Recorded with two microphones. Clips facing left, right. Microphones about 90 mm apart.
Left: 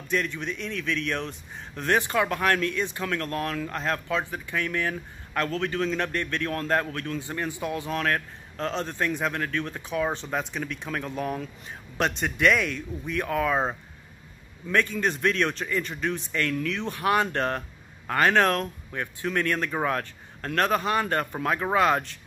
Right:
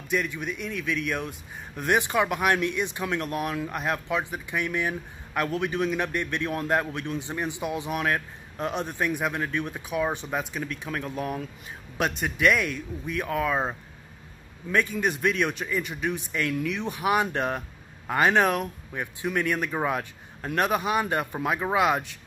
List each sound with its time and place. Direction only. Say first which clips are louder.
0.1 s speech: even; 10° right (ahead or behind)